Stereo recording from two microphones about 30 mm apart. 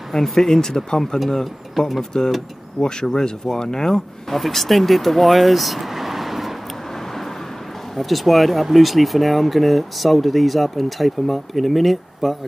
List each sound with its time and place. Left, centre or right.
0.1 s speech: centre
1.4 s speech: centre
2.8 s speech: left
4.3 s speech: centre
6.9 s vehicle: centre
7.9 s speech: centre